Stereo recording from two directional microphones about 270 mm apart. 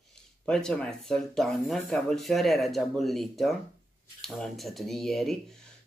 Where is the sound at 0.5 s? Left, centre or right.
Centre.